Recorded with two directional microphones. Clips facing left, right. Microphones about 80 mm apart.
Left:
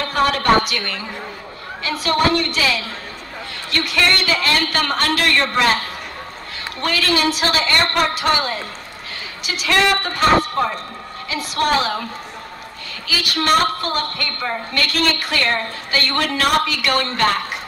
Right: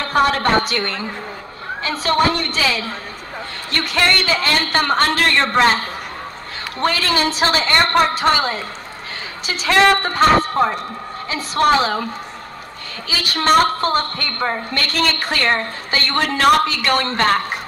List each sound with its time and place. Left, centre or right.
0.0 s a woman's voice: right
13.1 s a woman's voice: right